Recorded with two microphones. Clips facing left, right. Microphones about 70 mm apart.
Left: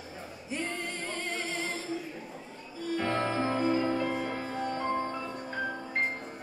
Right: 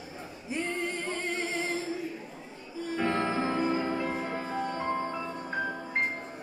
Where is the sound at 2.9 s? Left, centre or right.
Right.